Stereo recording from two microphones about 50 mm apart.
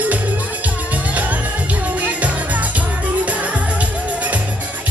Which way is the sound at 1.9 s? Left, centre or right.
Right.